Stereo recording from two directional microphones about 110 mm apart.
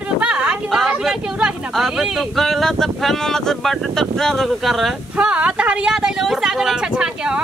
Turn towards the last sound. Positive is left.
turn(degrees=-5)  # may be behind; listen again after turning